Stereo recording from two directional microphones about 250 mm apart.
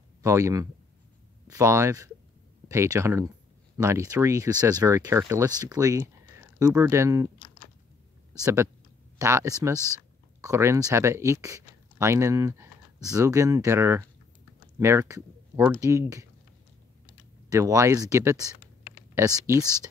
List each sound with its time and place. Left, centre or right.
0.2 s speech: centre
7.3 s biting: centre
9.2 s speech: centre
17.5 s speech: centre